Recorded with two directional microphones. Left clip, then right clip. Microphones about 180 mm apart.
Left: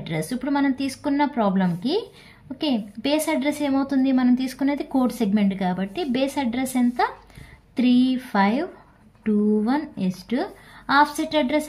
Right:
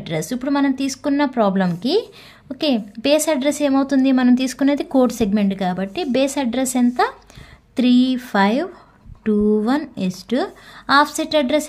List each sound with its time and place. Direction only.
0.0 s a woman's voice: 35° right (ahead or behind)